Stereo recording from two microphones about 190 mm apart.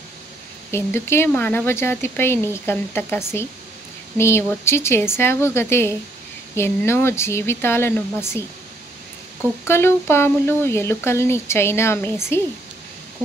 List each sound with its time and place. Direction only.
0.7 s speech: 15° left (ahead or behind)
9.7 s speech: 10° left (ahead or behind)